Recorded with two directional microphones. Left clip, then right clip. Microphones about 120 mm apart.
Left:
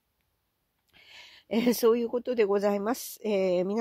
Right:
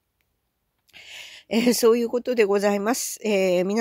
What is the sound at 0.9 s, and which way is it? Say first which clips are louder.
Speech: right 10 dB; 20° right (ahead or behind).